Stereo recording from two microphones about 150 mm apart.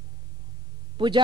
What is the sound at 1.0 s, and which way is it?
Speech, 35° right (ahead or behind).